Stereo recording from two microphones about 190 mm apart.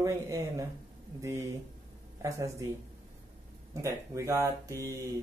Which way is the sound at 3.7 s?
15° right (ahead or behind).